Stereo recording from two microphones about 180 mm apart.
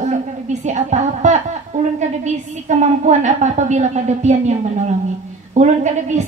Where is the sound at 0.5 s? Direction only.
40° right (ahead or behind).